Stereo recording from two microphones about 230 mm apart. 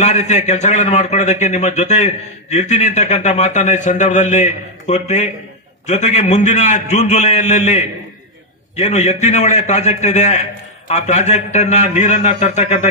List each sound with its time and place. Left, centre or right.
0.0 s a man's voice: left